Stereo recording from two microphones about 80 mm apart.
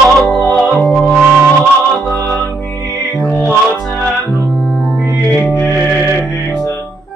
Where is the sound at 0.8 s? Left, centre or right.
Centre.